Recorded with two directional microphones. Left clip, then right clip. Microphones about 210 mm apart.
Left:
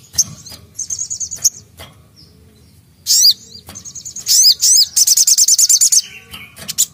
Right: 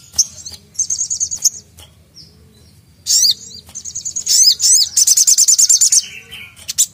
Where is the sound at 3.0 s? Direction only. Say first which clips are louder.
Left 2 dB; 25° left (ahead or behind).